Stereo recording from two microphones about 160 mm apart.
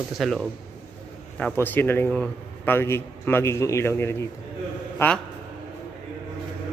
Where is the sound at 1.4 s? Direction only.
10° left (ahead or behind).